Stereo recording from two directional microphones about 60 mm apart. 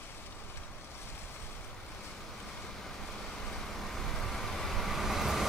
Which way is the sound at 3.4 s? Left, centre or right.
Centre.